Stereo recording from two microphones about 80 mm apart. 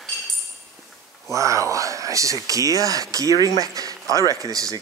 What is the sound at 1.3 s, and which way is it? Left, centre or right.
Speech, right.